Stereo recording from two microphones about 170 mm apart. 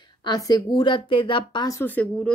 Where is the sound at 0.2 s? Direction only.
25° left (ahead or behind).